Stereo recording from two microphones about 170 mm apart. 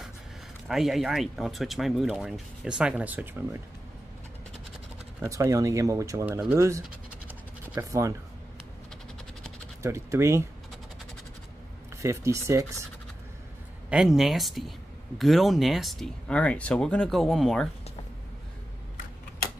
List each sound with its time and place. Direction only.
0.7 s speech: centre (ahead or behind)
5.2 s speech: 15° right (ahead or behind)
7.2 s scratch: 15° right (ahead or behind)
9.8 s speech: 15° right (ahead or behind)
12.0 s speech: 15° right (ahead or behind)
13.8 s speech: 5° right (ahead or behind)